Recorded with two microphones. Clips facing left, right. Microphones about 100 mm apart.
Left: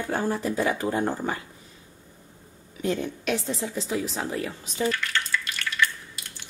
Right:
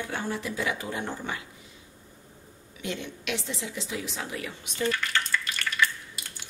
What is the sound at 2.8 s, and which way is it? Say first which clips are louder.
Speech: left 7 dB; 40° left (ahead or behind).